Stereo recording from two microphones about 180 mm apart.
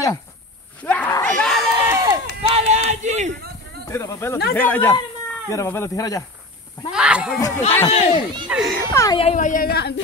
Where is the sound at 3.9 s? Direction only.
15° left (ahead or behind).